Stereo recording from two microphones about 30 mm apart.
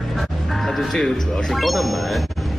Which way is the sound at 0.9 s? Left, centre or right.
Centre.